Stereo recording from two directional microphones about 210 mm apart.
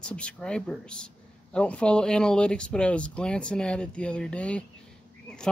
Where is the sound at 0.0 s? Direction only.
5° left (ahead or behind).